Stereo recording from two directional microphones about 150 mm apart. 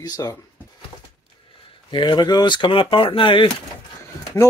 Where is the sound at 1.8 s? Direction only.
30° left (ahead or behind).